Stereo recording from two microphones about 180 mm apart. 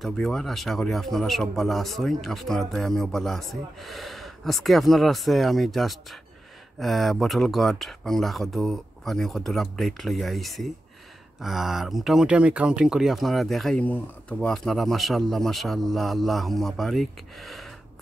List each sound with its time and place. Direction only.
0.0 s speech: centre (ahead or behind)